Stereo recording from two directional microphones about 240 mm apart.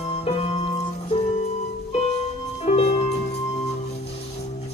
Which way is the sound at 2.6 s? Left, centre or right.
Left.